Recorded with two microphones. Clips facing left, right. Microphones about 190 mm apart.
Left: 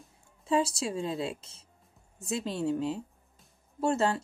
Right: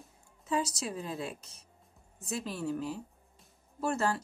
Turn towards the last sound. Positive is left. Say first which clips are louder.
# left 4 dB
turn(degrees=25)  # may be behind; listen again after turning